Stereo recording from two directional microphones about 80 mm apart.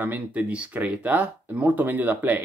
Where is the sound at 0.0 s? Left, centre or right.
Right.